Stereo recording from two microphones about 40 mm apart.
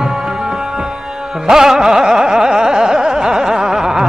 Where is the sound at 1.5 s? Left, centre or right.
Centre.